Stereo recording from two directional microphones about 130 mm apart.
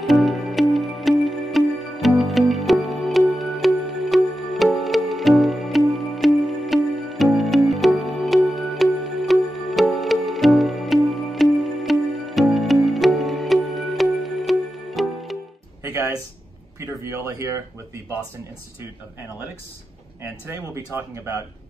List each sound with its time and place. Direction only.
0.0 s music: centre (ahead or behind)
15.8 s music: 25° right (ahead or behind)
16.8 s a sound: 20° right (ahead or behind)
20.4 s speech: 20° right (ahead or behind)